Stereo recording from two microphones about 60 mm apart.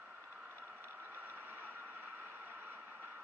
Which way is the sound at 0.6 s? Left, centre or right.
Right.